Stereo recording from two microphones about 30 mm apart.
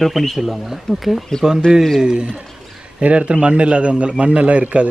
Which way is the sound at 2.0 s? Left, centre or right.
Right.